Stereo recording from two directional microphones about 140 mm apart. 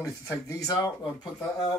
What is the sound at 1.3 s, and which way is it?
Speech, 5° left (ahead or behind).